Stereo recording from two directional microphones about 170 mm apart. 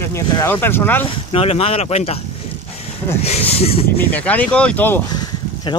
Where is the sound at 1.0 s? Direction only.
35° left (ahead or behind).